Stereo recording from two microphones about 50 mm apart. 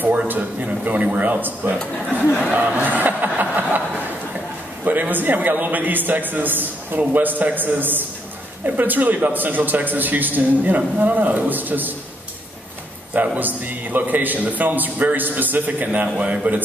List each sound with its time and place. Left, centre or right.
0.3 s a man's voice: right
2.5 s a sound: right
4.8 s a man's voice: right
13.1 s a man's voice: right